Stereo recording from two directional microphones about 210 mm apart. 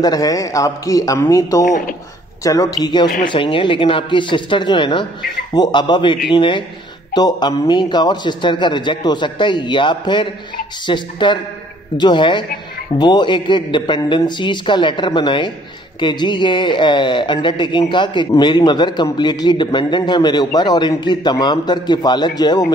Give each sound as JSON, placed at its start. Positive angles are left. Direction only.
{"t": 0.0, "sound": "a man's voice", "side_deg": 15}